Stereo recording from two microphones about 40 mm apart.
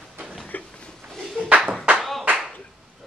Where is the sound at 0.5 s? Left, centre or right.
Left.